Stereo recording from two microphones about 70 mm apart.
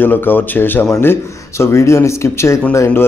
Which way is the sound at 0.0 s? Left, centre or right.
Left.